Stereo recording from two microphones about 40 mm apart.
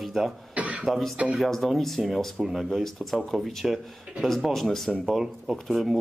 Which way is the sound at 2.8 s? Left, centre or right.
Centre.